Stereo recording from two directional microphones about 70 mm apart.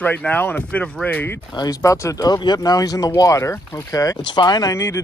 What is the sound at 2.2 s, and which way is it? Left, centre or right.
Speech, left.